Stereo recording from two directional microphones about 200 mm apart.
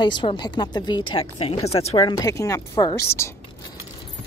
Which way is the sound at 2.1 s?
15° left (ahead or behind).